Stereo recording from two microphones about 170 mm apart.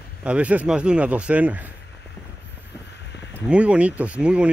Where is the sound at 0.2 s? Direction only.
5° right (ahead or behind).